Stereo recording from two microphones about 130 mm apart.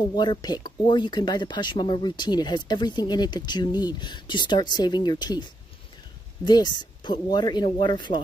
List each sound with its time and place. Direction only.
0.1 s speech: 35° left (ahead or behind)